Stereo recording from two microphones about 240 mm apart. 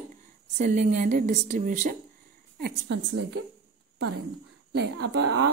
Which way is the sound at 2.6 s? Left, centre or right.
Right.